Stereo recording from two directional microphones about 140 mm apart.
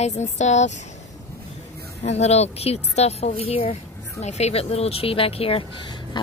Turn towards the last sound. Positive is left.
turn(degrees=35)  # may be behind; listen again after turning